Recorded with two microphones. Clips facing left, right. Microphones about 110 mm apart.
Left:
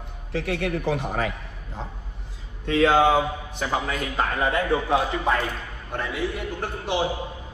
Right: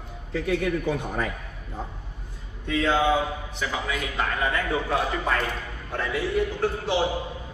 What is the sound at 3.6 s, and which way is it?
Speech, 40° left (ahead or behind).